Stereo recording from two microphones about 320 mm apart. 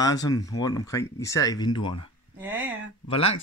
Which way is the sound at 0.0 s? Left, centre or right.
Centre.